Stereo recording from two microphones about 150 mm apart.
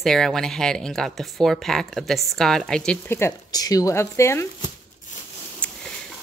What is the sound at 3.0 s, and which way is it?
Speech, 15° left (ahead or behind).